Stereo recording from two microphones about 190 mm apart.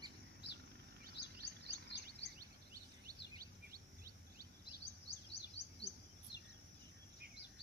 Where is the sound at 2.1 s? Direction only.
50° right (ahead or behind).